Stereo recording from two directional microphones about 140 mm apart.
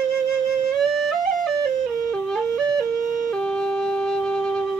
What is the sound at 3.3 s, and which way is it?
Music, 5° left (ahead or behind).